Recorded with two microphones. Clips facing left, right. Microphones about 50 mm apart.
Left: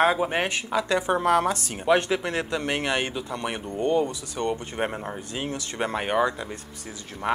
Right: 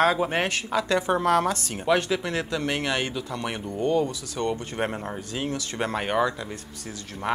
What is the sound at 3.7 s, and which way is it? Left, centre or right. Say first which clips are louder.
Speech: even; left.